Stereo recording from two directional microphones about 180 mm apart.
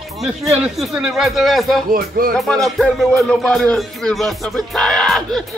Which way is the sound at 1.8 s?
55° right (ahead or behind).